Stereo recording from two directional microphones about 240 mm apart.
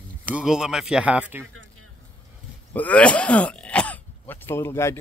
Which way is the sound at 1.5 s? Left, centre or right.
Right.